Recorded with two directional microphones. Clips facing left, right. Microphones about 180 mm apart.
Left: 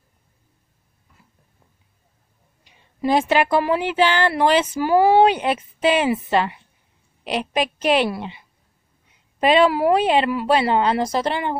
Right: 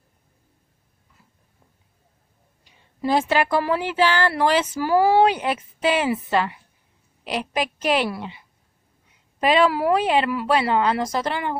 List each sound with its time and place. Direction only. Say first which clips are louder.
2.6 s speech: left 3 dB; 15° left (ahead or behind)